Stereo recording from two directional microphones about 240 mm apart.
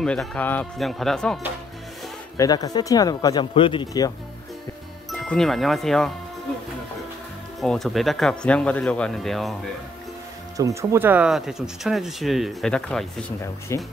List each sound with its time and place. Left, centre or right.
0.0 s speech: centre
2.3 s speech: centre
5.3 s speech: centre
7.6 s speech: centre
10.6 s speech: centre